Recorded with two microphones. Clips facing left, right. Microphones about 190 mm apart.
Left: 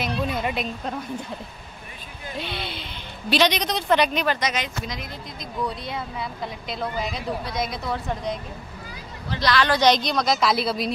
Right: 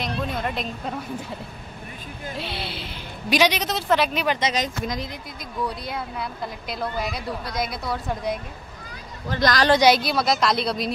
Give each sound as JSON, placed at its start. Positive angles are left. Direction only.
{"t": 0.0, "sound": "a woman's voice", "side_deg": 5}
{"t": 2.3, "sound": "a woman's voice", "side_deg": 0}
{"t": 4.3, "sound": "speech", "side_deg": -25}
{"t": 4.6, "sound": "speech", "side_deg": -40}
{"t": 5.9, "sound": "a woman's voice", "side_deg": 0}
{"t": 9.3, "sound": "speech", "side_deg": -45}
{"t": 9.8, "sound": "a woman's voice", "side_deg": -10}